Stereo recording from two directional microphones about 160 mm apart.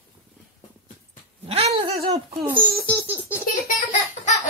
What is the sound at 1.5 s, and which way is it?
Cat, 40° right (ahead or behind).